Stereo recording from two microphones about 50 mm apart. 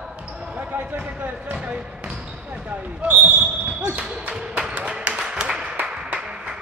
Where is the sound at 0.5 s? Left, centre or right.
Right.